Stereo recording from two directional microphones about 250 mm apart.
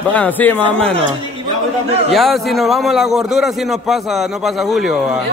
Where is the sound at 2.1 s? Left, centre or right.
Centre.